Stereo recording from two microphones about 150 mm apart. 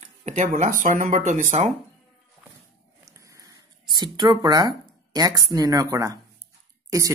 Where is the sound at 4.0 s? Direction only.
30° right (ahead or behind).